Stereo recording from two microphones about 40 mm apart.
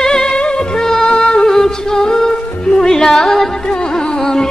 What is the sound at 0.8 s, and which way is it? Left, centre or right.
Music of bollywood, centre.